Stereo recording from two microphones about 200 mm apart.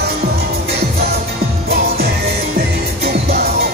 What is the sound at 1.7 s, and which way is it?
Music, 50° right (ahead or behind).